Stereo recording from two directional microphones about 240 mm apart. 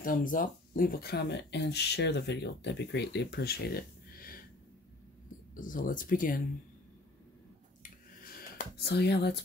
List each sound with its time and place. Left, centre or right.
0.0 s speech: left
5.5 s speech: left
7.8 s a sound: left